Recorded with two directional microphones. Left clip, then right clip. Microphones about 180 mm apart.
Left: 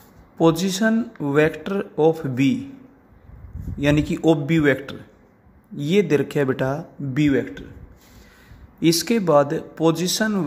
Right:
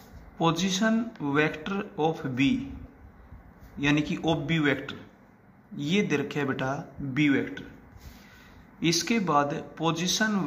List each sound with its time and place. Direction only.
0.4 s speech: 50° left (ahead or behind)
3.7 s speech: 50° left (ahead or behind)
8.7 s speech: 50° left (ahead or behind)